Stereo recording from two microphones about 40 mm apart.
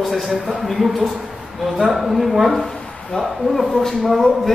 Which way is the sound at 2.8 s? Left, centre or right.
Left.